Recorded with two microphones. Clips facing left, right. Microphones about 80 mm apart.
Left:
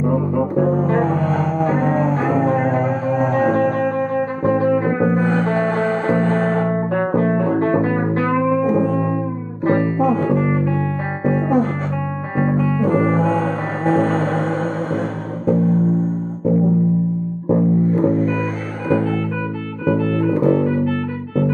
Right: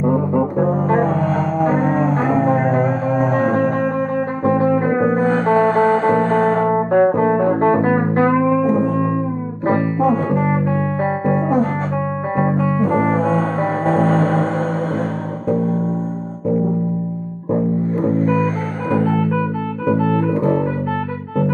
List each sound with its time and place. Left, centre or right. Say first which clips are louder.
0.0 s music: right 2 dB; centre
5.2 s music: right 2 dB; centre
5.5 s music: right 5 dB; centre
6.6 s music: right 4 dB; right
7.1 s music: right 3 dB; centre
7.9 s music: right 3 dB; right
8.5 s music: right 1 dB; centre
17.5 s music: left 2 dB; centre
20.0 s music: right 2 dB; right
20.3 s music: left 1 dB; centre